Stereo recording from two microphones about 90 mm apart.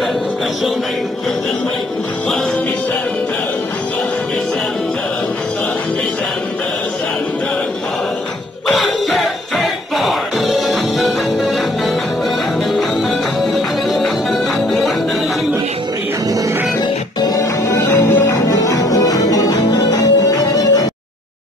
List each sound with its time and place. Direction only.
8.6 s music: centre (ahead or behind)
13.5 s music: 5° left (ahead or behind)
17.4 s music: 30° left (ahead or behind)
18.3 s music: 40° left (ahead or behind)